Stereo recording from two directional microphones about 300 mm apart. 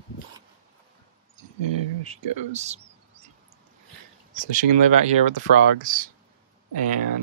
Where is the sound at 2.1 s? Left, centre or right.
Right.